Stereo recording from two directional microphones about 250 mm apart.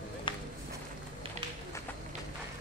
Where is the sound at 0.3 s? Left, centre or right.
Centre.